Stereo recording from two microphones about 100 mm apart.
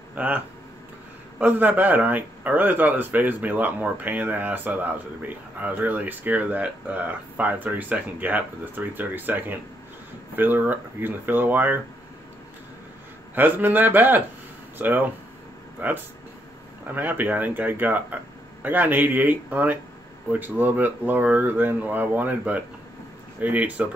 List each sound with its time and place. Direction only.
0.1 s speech: 15° right (ahead or behind)
1.4 s speech: 15° right (ahead or behind)
13.3 s speech: 20° right (ahead or behind)